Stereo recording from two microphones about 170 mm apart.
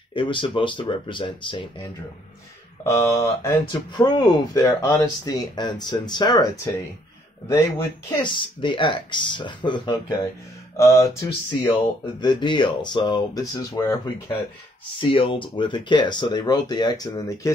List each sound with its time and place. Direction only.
0.1 s speech: 30° left (ahead or behind)
2.8 s speech: 15° left (ahead or behind)
8.2 s speech: 30° left (ahead or behind)
11.6 s speech: 25° left (ahead or behind)